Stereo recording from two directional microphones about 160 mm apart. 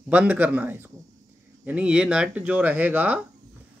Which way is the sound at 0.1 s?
10° right (ahead or behind).